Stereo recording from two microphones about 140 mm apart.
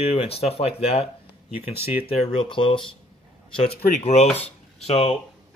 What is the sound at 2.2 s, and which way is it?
Speech, 35° left (ahead or behind).